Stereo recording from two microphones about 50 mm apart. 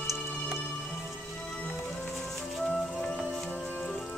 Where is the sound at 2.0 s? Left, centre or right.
Centre.